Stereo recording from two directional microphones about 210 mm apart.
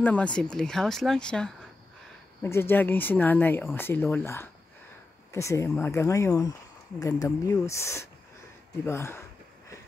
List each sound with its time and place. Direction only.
0.0 s speech: 5° left (ahead or behind)